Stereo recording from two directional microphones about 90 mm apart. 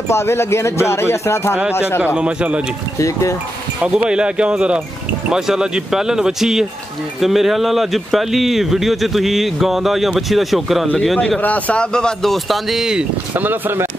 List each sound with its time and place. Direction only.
0.1 s speech: 30° left (ahead or behind)
2.1 s speech: 10° right (ahead or behind)
3.0 s speech: 35° left (ahead or behind)
3.8 s speech: 10° right (ahead or behind)
13.3 s speech: 20° right (ahead or behind)